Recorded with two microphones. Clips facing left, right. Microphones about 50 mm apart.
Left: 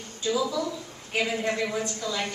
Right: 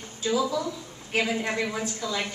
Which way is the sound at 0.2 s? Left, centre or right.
Centre.